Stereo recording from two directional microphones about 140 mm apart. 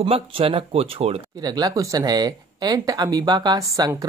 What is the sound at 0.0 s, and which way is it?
Speech, 40° right (ahead or behind).